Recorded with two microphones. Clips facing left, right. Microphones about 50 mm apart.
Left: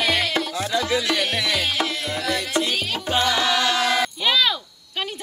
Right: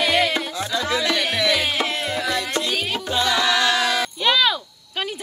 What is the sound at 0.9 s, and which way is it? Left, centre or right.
Music, centre.